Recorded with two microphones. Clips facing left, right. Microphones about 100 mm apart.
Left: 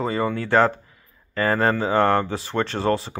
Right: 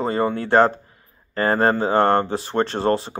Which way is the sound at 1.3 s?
35° right (ahead or behind).